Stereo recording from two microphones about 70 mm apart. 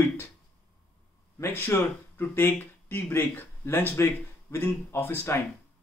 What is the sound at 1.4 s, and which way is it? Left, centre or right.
Speech, left.